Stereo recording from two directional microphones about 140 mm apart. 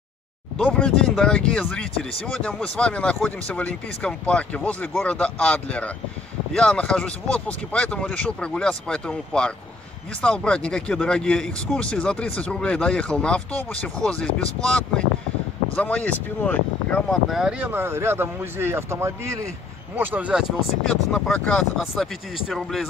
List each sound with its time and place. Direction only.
0.7 s speech: 5° left (ahead or behind); by 20.4 s 10° right (ahead or behind)
20.8 s speech: 5° left (ahead or behind)